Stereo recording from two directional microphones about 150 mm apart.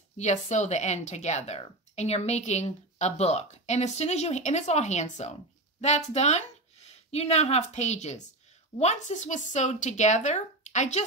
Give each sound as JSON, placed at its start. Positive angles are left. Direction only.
{"t": 0.2, "sound": "a woman's voice", "side_deg": 50}